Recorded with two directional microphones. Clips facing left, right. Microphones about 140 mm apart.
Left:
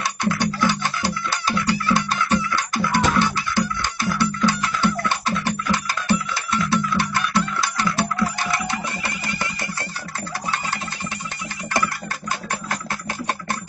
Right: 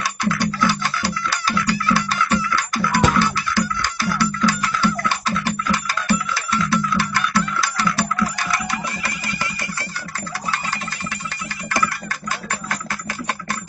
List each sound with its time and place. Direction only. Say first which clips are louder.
0.0 s music: right 1 dB; 20° left (ahead or behind)